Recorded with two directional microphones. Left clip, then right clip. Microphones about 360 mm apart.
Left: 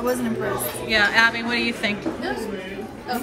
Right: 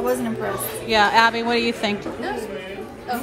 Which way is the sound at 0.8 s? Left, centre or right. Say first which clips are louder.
Right 2 dB; centre.